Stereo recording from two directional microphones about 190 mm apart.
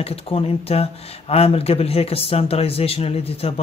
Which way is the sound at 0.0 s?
30° left (ahead or behind).